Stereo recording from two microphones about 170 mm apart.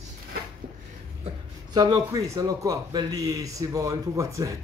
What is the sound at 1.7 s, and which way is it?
Speech, 20° right (ahead or behind).